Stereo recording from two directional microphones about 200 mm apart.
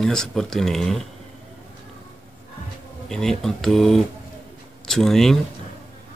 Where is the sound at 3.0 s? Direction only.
Centre (ahead or behind).